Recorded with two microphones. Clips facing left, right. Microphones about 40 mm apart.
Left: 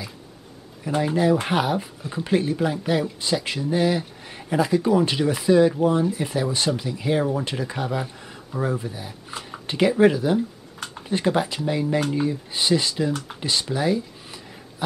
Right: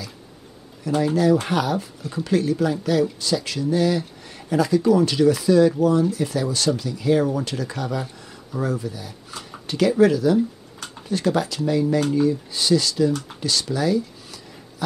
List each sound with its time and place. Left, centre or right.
0.8 s speech: left